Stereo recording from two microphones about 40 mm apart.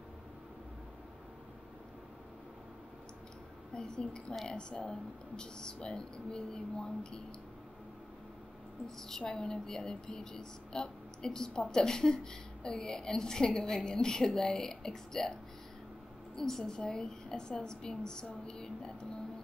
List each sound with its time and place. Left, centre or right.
3.7 s speech: centre
8.8 s a woman's voice: centre
16.3 s a woman's voice: centre